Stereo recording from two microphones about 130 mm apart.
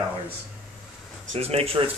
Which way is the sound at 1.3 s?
50° right (ahead or behind).